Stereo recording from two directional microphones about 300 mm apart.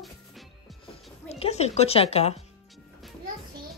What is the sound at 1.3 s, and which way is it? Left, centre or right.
Music, left.